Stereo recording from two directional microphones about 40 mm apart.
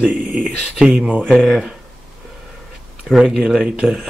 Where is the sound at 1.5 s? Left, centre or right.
Centre.